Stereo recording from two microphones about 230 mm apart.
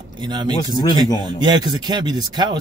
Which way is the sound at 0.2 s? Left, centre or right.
Centre.